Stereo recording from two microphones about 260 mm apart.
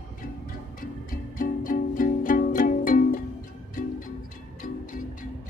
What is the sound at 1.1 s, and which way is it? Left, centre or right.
Music, left.